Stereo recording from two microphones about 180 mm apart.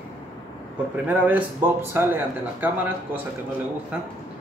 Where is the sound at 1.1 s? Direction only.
10° right (ahead or behind).